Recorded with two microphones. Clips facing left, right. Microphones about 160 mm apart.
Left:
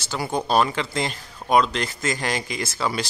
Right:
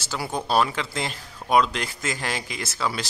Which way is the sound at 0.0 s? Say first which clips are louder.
Left 3 dB; 5° right (ahead or behind).